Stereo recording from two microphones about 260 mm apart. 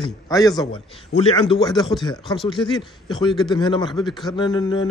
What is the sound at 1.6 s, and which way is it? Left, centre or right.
A man's voice, centre.